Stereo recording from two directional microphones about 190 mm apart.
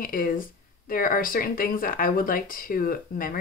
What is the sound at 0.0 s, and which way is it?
Speech, 45° left (ahead or behind).